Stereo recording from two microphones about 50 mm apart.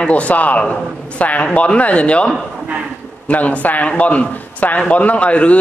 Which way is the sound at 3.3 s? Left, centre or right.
Left.